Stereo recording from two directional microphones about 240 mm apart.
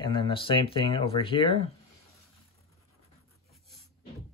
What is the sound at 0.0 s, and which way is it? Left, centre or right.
Speech, left.